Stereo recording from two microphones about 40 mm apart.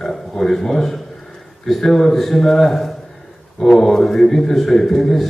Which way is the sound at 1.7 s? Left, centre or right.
Centre.